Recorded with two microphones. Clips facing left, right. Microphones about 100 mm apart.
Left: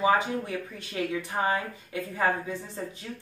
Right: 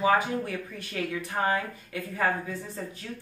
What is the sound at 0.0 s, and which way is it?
Speech, 20° left (ahead or behind).